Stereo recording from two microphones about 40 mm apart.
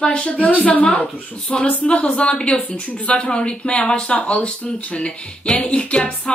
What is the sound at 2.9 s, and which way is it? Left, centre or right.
Speech, left.